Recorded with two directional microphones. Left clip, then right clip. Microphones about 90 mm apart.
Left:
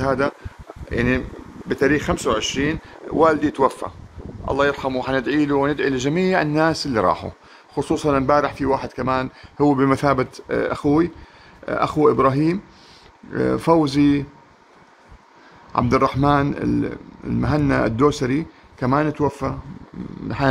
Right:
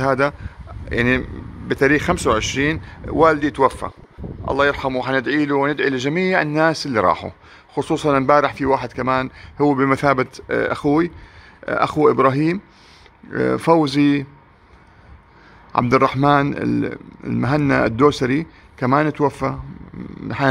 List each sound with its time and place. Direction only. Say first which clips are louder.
0.0 s a man's voice: right 3 dB; 40° right (ahead or behind)
3.1 s speech: right 2 dB; 20° right (ahead or behind)
15.7 s a man's voice: right 2 dB; 30° right (ahead or behind)